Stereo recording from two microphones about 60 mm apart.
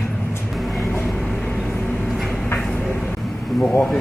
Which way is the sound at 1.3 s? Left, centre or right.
Centre.